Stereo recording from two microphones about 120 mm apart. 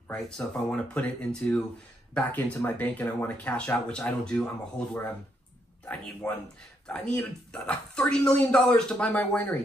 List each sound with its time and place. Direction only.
0.1 s speech: 10° left (ahead or behind)
6.2 s speech: 30° left (ahead or behind)
6.9 s speech: 10° left (ahead or behind)